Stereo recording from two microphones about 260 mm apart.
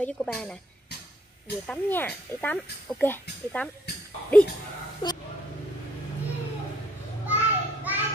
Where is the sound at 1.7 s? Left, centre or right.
Centre.